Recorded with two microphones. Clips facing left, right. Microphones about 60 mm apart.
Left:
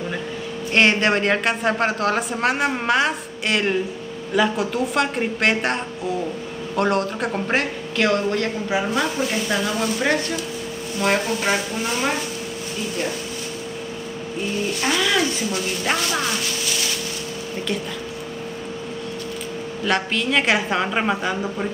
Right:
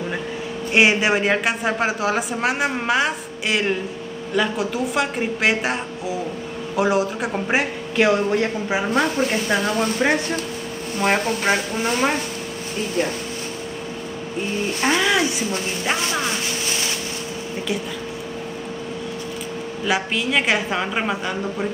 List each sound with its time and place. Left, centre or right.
0.7 s a woman's voice: centre
8.9 s speech: right
10.0 s a woman's voice: centre
14.8 s speech: right
19.8 s speech: centre